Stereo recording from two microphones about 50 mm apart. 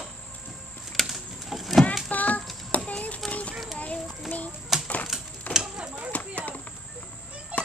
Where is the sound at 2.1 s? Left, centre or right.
Left.